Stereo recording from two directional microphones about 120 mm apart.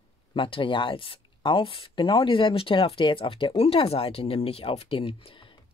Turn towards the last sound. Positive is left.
turn(degrees=45)  # may be behind; listen again after turning